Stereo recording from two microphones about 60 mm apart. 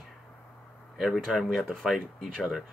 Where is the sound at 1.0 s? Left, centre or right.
Centre.